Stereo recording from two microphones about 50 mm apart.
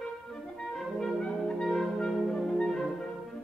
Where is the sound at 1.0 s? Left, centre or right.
Centre.